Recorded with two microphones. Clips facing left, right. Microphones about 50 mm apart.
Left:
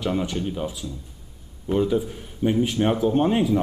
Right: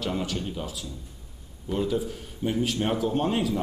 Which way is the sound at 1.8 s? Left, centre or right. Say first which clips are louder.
Left 5 dB; centre.